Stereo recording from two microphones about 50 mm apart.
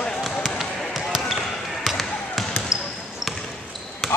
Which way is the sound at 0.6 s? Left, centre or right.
Centre.